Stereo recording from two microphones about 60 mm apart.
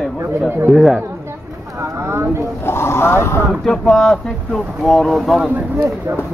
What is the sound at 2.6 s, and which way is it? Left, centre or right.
Speech, left.